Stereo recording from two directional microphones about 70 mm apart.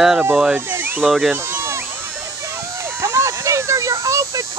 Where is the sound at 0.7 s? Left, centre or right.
Right.